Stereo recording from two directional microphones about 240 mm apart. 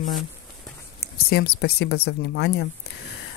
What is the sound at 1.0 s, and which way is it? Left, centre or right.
Speech, left.